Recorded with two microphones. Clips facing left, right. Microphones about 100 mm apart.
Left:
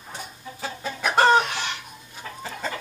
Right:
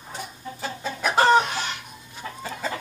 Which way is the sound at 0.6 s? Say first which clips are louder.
Right 1 dB; centre (ahead or behind).